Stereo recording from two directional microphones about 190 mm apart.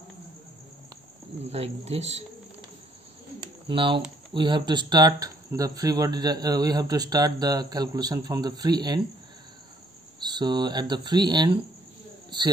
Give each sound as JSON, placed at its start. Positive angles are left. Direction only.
{"t": 1.4, "sound": "speech", "side_deg": -30}
{"t": 3.6, "sound": "speech", "side_deg": -25}
{"t": 10.2, "sound": "speech", "side_deg": -20}